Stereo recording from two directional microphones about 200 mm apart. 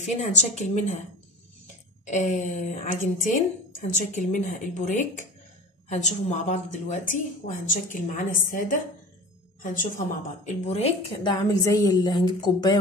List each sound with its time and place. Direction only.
0.0 s a woman's voice: 35° left (ahead or behind)
2.0 s a woman's voice: 40° left (ahead or behind); by 12.7 s 20° left (ahead or behind)